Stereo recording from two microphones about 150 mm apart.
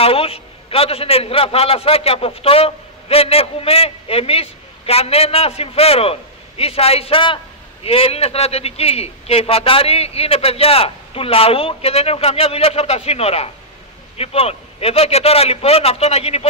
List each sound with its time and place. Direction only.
0.0 s a man's voice: 40° left (ahead or behind)